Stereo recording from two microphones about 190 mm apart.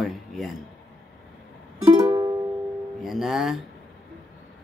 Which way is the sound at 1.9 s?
15° right (ahead or behind).